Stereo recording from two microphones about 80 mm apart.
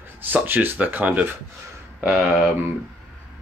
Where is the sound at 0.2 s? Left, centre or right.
Right.